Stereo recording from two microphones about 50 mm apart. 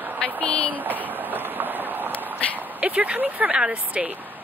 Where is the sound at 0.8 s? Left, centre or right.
Right.